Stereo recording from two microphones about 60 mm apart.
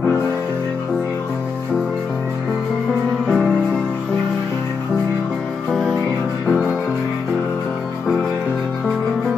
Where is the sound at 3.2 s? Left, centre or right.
Centre.